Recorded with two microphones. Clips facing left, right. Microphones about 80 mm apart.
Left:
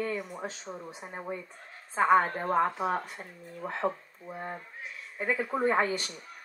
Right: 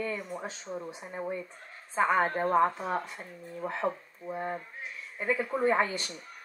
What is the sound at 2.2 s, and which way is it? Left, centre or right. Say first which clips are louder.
Speech: right 3 dB; right.